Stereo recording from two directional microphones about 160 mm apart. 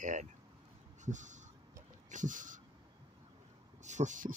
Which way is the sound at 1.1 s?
50° right (ahead or behind).